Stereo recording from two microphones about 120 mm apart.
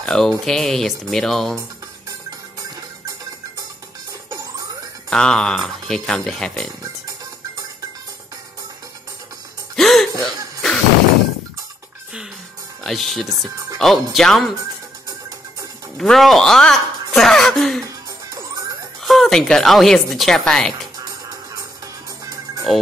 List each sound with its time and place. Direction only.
0.0 s speech: 5° left (ahead or behind)
5.1 s speech: 5° left (ahead or behind)
9.8 s music: centre (ahead or behind)
10.2 s cough: 5° left (ahead or behind)
12.8 s speech: centre (ahead or behind)
16.0 s speech: centre (ahead or behind)
17.8 s music: 30° right (ahead or behind)
19.0 s speech: centre (ahead or behind)
22.2 s music: 30° right (ahead or behind)